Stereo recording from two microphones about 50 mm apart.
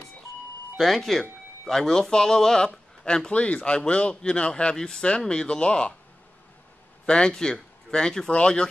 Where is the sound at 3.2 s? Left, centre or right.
Left.